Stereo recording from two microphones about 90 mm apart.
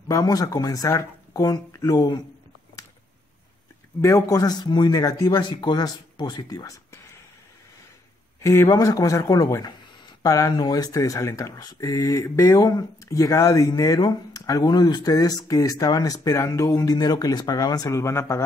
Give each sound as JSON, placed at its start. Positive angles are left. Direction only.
{"t": 0.1, "sound": "speech", "side_deg": 40}
{"t": 4.0, "sound": "speech", "side_deg": 35}
{"t": 8.4, "sound": "speech", "side_deg": 35}
{"t": 12.6, "sound": "speech", "side_deg": 45}